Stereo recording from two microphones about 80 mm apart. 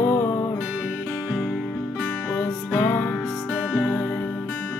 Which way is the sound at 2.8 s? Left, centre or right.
Left.